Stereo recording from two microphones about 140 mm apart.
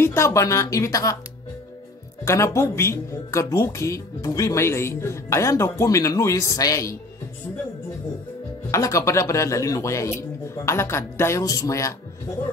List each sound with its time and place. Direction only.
0.0 s a woman's voice: 20° left (ahead or behind)
2.2 s a woman's voice: 20° left (ahead or behind)
8.7 s a woman's voice: 20° left (ahead or behind)